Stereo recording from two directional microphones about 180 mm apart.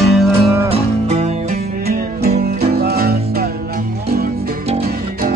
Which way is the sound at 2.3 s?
55° right (ahead or behind).